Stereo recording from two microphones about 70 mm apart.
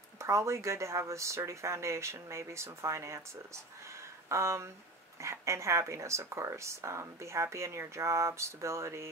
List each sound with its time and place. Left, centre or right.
0.2 s speech: right